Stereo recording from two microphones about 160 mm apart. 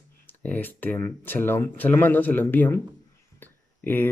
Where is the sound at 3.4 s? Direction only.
15° left (ahead or behind).